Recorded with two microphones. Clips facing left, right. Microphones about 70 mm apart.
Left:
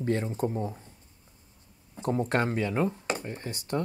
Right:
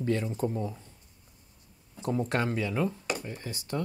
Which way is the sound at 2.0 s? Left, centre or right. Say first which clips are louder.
Left 2 dB; left.